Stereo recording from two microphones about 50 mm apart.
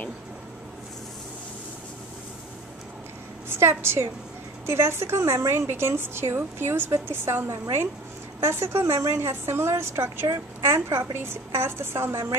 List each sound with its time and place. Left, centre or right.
3.4 s a woman's voice: right